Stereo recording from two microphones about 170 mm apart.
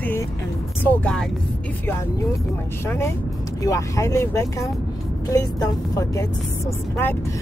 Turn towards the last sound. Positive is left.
turn(degrees=15)  # may be behind; listen again after turning